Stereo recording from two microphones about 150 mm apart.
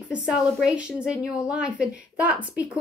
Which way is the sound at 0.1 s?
5° right (ahead or behind).